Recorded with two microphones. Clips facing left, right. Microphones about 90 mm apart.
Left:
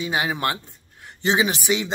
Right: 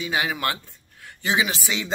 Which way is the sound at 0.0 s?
25° left (ahead or behind).